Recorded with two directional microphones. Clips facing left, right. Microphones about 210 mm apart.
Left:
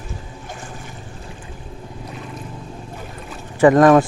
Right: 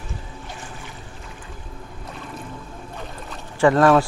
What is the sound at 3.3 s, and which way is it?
Boat, 15° left (ahead or behind).